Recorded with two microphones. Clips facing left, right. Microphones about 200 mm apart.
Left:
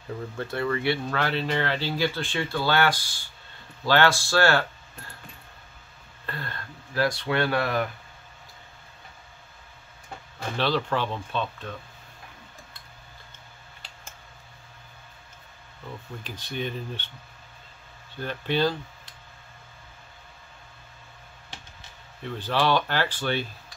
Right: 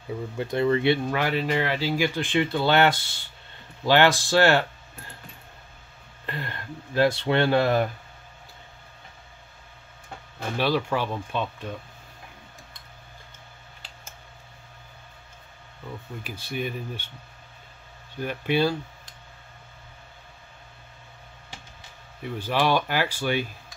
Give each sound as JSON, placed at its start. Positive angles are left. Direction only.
{"t": 0.4, "sound": "speech", "side_deg": -20}
{"t": 1.1, "sound": "speech", "side_deg": -10}
{"t": 6.2, "sound": "speech", "side_deg": -20}
{"t": 10.6, "sound": "speech", "side_deg": -10}
{"t": 16.3, "sound": "speech", "side_deg": -10}
{"t": 18.2, "sound": "speech", "side_deg": -10}
{"t": 22.2, "sound": "speech", "side_deg": -10}